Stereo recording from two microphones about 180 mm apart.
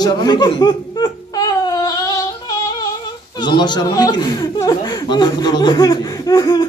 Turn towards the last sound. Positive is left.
turn(degrees=20)  # may be behind; listen again after turning